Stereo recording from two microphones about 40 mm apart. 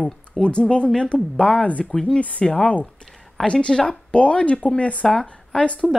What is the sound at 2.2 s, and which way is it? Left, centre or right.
Speech, left.